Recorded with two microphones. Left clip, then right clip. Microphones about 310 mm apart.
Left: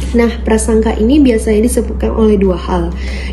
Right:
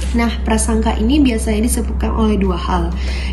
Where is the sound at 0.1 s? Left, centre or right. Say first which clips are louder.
Left 7 dB; centre.